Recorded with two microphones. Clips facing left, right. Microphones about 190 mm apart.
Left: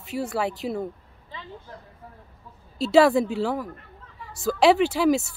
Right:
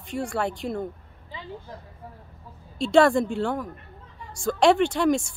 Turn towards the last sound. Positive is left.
turn(degrees=5)  # may be behind; listen again after turning